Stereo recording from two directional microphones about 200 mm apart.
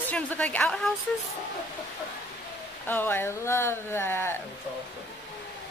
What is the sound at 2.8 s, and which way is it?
Speech, 10° left (ahead or behind).